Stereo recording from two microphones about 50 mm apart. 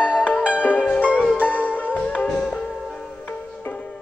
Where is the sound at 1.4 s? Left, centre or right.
Left.